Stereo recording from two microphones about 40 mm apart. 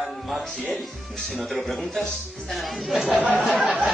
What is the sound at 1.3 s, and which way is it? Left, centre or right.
A man's voice, centre.